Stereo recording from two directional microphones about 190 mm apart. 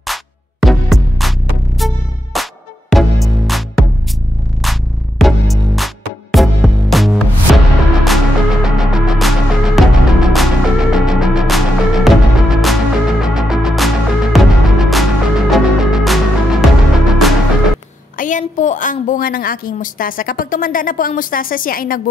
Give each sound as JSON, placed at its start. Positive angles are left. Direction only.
{"t": 0.0, "sound": "music", "side_deg": 0}
{"t": 4.6, "sound": "music", "side_deg": 0}
{"t": 18.1, "sound": "a woman's voice", "side_deg": 45}